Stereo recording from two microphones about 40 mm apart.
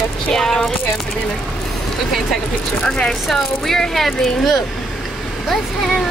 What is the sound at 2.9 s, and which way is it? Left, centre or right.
Speech, centre.